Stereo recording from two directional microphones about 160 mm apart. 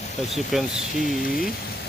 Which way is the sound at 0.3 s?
Centre (ahead or behind).